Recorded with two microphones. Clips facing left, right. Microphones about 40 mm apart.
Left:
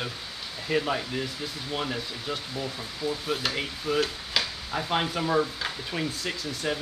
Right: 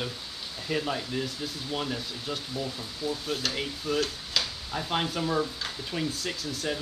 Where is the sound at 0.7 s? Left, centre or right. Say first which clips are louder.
Left 3 dB; centre.